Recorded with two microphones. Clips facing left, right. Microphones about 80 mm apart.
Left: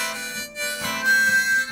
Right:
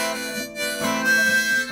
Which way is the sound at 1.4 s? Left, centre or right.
Left.